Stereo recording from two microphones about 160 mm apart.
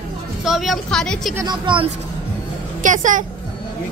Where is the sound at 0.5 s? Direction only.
Centre (ahead or behind).